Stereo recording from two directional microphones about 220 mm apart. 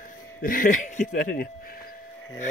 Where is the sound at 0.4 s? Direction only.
40° left (ahead or behind).